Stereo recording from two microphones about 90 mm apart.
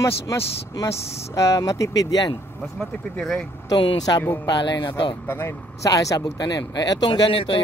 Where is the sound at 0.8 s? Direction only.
35° left (ahead or behind).